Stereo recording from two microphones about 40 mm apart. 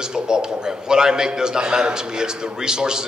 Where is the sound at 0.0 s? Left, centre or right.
Centre.